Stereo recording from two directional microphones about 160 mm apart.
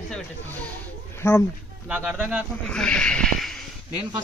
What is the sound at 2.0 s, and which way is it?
Speech, 10° right (ahead or behind).